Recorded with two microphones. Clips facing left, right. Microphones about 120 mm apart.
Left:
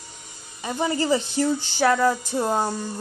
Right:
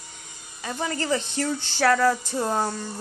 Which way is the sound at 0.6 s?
15° left (ahead or behind).